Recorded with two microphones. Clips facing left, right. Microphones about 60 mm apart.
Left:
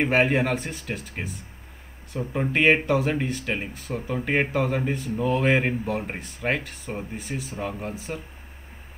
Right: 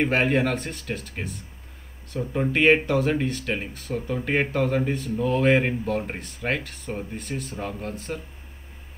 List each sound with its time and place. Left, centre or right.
0.0 s speech: centre